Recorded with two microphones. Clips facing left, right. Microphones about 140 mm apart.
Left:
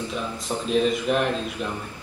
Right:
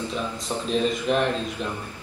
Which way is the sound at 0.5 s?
5° left (ahead or behind).